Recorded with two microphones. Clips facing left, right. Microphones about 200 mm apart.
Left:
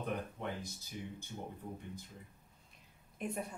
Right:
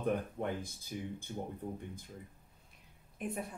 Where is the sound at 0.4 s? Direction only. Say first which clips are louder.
Right 5 dB; 50° right (ahead or behind).